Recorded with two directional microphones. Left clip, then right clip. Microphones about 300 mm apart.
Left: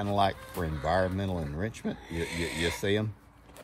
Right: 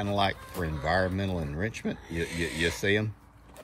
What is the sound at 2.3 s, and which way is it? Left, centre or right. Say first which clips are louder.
Speech: right 2 dB; left.